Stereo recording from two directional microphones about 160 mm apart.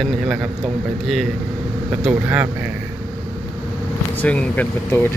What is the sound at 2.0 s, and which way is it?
Speech, 10° right (ahead or behind).